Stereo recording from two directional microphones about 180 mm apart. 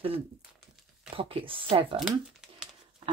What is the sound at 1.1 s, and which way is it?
Speech, 30° right (ahead or behind).